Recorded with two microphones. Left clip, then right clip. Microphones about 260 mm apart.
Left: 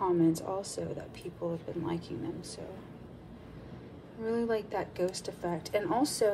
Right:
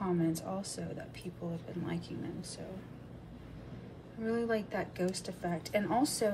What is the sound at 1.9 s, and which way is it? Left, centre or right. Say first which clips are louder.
Speech: left 4 dB; centre.